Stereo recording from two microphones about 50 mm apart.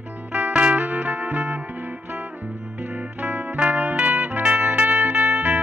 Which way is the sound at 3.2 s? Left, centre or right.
Right.